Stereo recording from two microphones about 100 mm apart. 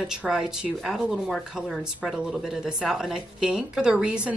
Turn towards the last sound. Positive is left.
turn(degrees=-10)  # may be behind; listen again after turning